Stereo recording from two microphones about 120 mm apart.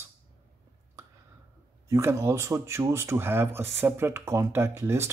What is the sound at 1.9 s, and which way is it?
Speech, 25° right (ahead or behind).